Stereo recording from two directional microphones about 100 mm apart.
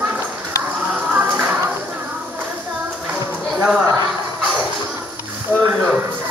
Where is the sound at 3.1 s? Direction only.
15° right (ahead or behind).